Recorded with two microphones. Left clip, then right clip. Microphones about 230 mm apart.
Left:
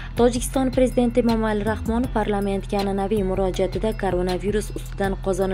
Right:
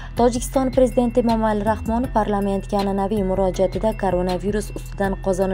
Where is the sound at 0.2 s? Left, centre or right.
Centre.